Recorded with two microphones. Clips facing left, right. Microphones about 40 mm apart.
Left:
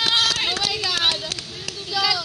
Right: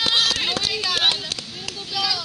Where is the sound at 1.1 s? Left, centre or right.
Right.